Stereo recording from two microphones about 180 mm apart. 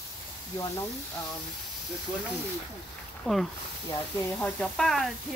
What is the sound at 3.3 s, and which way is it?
Speech, 5° left (ahead or behind).